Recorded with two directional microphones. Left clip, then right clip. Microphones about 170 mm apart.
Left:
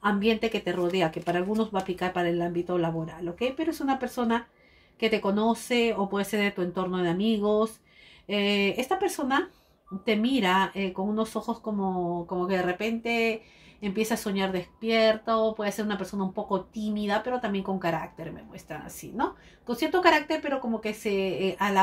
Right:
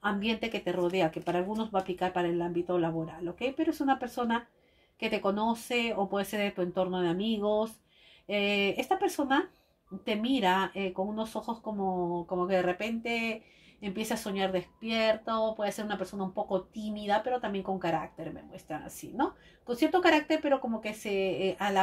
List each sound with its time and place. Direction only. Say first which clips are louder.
0.0 s speech: left 6 dB; 35° right (ahead or behind)
12.4 s speech: even; 35° right (ahead or behind)